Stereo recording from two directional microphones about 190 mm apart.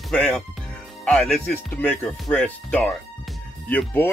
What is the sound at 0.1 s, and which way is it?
Speech, 5° left (ahead or behind).